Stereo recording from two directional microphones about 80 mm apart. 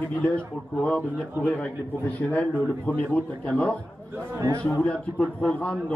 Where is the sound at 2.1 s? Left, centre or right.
Centre.